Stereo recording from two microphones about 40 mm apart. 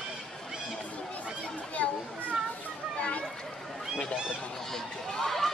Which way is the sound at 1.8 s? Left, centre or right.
Left.